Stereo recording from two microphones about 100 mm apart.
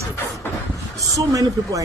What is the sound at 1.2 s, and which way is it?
Speech, 35° right (ahead or behind).